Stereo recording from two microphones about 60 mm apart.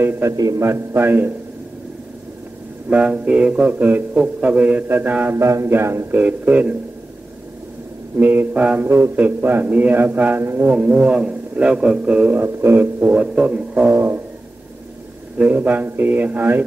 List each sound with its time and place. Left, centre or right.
0.2 s a man's voice: right
0.6 s a man's voice: right
2.9 s a man's voice: right
5.4 s speech: right
6.1 s a man's voice: right
8.2 s a man's voice: right
8.8 s a man's voice: right
12.4 s a man's voice: right
13.1 s speech: centre
13.8 s a man's voice: right
15.3 s a man's voice: right